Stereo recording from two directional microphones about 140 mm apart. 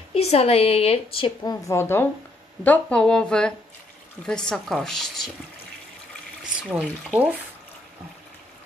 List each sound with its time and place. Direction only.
0.1 s a woman's voice: 45° left (ahead or behind)
1.5 s a woman's voice: 20° left (ahead or behind); by 5.3 s centre (ahead or behind)
6.7 s speech: 10° right (ahead or behind)